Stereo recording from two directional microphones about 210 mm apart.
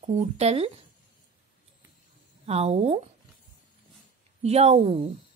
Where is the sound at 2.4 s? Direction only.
30° right (ahead or behind).